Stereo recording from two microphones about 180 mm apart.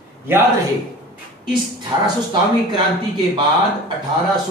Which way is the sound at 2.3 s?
25° right (ahead or behind).